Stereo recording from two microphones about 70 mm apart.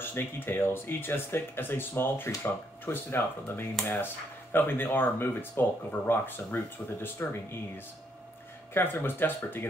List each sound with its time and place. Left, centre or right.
0.0 s speech: left
8.7 s speech: left